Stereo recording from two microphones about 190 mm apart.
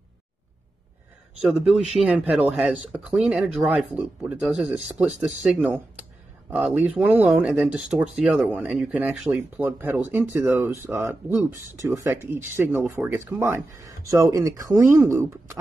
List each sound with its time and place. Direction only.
1.4 s speech: 5° right (ahead or behind)